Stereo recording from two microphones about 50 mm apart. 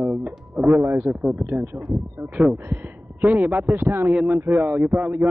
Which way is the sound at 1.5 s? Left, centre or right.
Right.